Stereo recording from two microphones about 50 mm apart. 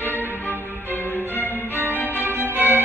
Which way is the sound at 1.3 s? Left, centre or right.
Left.